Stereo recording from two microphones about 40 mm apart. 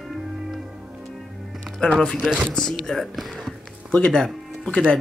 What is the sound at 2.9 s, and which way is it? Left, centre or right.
Speech, centre.